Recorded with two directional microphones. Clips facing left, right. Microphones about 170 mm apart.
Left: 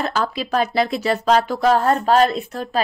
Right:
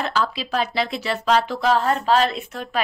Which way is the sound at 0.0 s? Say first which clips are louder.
Left 2 dB; 45° left (ahead or behind).